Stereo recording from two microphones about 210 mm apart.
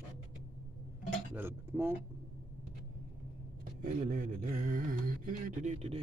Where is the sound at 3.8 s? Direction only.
40° right (ahead or behind).